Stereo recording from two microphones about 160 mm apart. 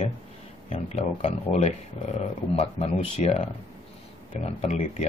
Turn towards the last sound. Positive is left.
turn(degrees=40)  # may be behind; listen again after turning